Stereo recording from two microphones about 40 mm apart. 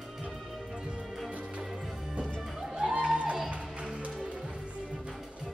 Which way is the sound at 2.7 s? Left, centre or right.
Right.